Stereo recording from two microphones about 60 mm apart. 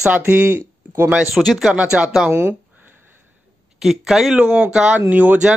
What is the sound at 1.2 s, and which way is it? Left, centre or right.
Speech, centre.